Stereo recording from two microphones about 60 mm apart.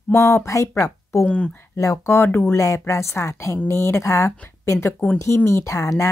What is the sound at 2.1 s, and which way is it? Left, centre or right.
Speech, left.